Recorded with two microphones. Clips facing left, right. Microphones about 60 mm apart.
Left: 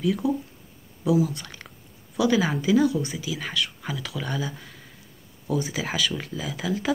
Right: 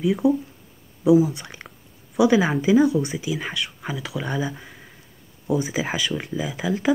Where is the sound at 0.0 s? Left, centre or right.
Centre.